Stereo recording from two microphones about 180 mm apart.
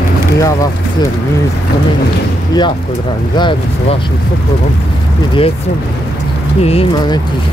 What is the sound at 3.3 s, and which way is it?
Speech, 25° left (ahead or behind).